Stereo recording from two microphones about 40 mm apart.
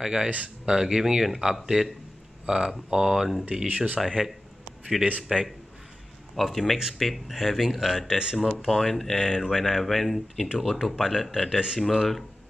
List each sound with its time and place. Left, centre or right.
0.0 s speech: centre
2.4 s speech: centre
3.4 s speech: right
5.0 s a man's voice: right
6.3 s speech: centre
11.5 s speech: centre